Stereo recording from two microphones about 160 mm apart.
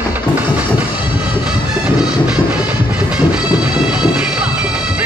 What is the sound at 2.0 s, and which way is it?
Music, 5° right (ahead or behind).